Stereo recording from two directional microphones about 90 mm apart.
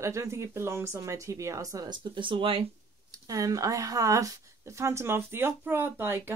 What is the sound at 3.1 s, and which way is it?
Speech, 40° right (ahead or behind).